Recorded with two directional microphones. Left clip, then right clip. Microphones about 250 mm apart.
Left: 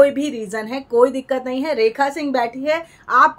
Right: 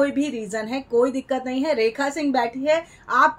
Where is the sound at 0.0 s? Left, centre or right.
Centre.